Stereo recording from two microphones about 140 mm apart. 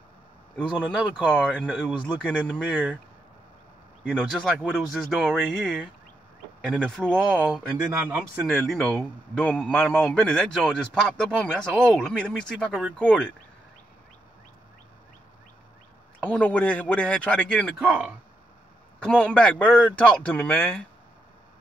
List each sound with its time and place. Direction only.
0.6 s a man's voice: 5° left (ahead or behind)
1.7 s a man's voice: 5° right (ahead or behind)
4.3 s a man's voice: 5° left (ahead or behind)
8.1 s a man's voice: 10° right (ahead or behind)
8.6 s a man's voice: 5° left (ahead or behind)
16.2 s a man's voice: 10° left (ahead or behind)
17.7 s a man's voice: 5° right (ahead or behind)
18.9 s a man's voice: 5° left (ahead or behind)